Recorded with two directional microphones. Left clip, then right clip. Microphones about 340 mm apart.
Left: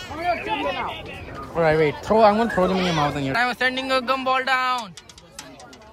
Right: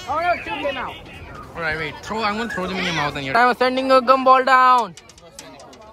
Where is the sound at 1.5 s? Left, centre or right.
Centre.